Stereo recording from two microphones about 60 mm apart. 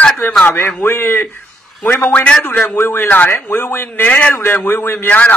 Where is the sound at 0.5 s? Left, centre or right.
Left.